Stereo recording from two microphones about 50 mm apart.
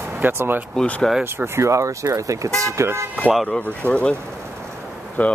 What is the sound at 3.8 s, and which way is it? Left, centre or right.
Speech, right.